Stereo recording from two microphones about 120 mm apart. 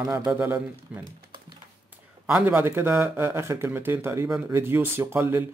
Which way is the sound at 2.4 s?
20° right (ahead or behind).